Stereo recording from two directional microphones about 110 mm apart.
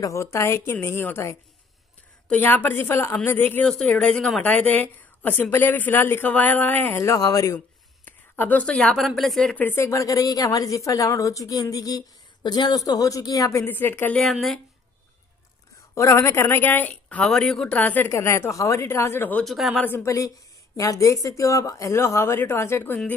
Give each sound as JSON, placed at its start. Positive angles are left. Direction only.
{"t": 0.0, "sound": "a woman's voice", "side_deg": 25}
{"t": 2.4, "sound": "a woman's voice", "side_deg": 20}
{"t": 7.5, "sound": "speech", "side_deg": 15}
{"t": 9.7, "sound": "a woman's voice", "side_deg": 25}
{"t": 14.2, "sound": "speech", "side_deg": 0}
{"t": 15.9, "sound": "a woman's voice", "side_deg": 25}
{"t": 18.1, "sound": "a woman's voice", "side_deg": 25}
{"t": 19.4, "sound": "speech", "side_deg": 0}
{"t": 19.8, "sound": "a woman's voice", "side_deg": 20}